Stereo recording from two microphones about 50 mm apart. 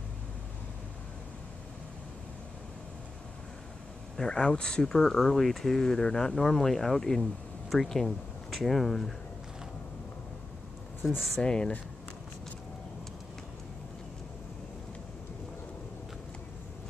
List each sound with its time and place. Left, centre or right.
4.2 s speech: centre
11.1 s speech: centre
11.4 s speech: centre